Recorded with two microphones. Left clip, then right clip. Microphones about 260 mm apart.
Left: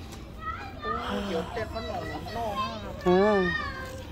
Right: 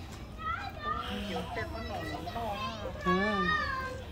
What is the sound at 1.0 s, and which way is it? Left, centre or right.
Children playing, centre.